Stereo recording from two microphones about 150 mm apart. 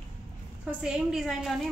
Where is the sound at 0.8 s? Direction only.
Centre (ahead or behind).